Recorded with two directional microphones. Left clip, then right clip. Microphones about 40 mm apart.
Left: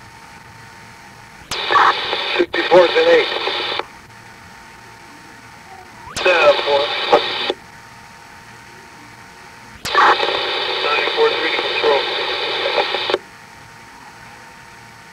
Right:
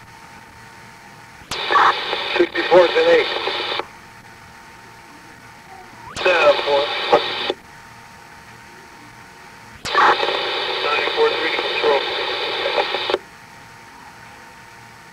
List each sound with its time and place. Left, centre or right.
1.5 s radio: right
6.0 s radio: right
9.8 s radio: right